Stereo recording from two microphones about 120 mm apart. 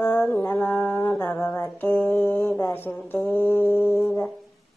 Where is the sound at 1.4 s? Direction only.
20° left (ahead or behind).